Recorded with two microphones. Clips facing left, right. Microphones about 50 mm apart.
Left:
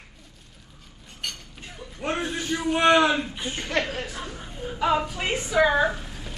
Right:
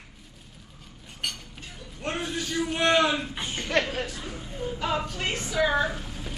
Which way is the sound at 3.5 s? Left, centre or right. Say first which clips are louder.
Right 1 dB; centre.